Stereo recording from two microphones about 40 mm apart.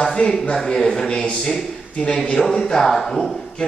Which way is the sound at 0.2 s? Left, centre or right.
Left.